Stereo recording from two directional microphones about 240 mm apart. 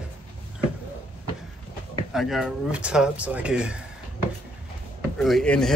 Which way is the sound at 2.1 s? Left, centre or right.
Centre.